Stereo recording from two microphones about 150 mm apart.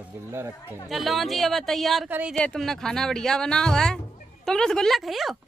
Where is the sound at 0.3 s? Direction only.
15° right (ahead or behind).